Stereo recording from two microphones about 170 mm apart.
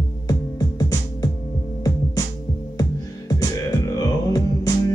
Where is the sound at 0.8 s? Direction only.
20° left (ahead or behind).